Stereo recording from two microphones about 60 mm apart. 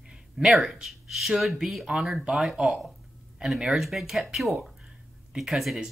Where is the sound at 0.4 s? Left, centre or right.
Centre.